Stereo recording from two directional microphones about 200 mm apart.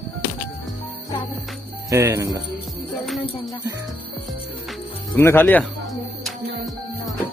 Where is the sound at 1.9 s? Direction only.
15° right (ahead or behind).